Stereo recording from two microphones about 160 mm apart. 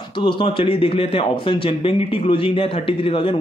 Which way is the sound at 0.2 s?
30° left (ahead or behind).